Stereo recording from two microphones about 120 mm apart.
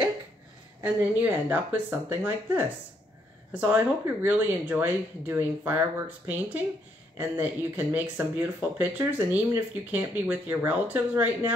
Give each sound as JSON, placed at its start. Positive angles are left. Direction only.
{"t": 0.9, "sound": "speech", "side_deg": -15}
{"t": 3.6, "sound": "speech", "side_deg": -15}